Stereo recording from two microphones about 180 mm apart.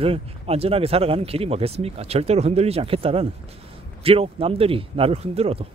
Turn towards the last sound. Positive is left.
turn(degrees=-35)  # may be behind; listen again after turning